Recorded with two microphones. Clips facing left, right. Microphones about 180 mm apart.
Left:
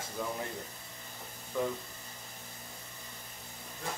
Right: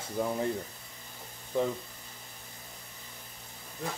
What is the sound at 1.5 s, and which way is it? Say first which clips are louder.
Speech: right 4 dB; 30° right (ahead or behind).